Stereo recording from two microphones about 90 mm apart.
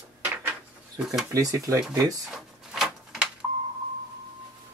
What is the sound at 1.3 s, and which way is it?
Speech, 40° right (ahead or behind).